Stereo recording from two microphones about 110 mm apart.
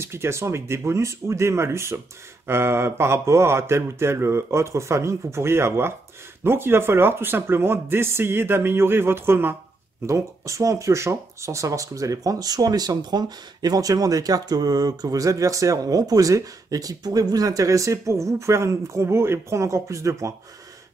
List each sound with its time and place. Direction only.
0.0 s speech: 25° right (ahead or behind)